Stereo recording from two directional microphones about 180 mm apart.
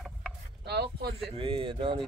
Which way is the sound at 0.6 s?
65° right (ahead or behind).